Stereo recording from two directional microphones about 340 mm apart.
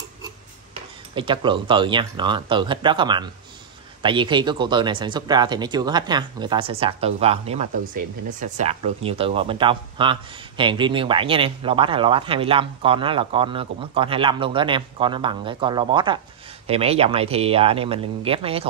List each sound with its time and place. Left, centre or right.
1.1 s speech: centre